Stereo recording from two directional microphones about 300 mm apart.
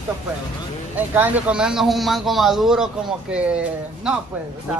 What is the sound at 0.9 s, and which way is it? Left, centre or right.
A man's voice, centre.